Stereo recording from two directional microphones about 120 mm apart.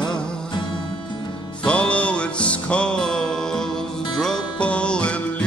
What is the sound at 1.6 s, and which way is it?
Music, 10° left (ahead or behind).